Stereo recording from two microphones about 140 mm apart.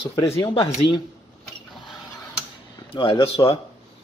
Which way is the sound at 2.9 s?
40° left (ahead or behind).